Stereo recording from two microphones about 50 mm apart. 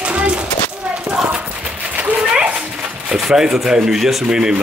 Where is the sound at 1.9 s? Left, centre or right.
Right.